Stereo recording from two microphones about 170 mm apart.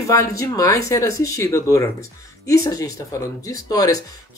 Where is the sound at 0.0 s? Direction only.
20° left (ahead or behind).